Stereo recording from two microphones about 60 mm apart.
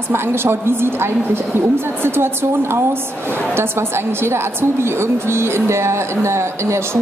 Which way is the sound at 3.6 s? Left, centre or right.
Right.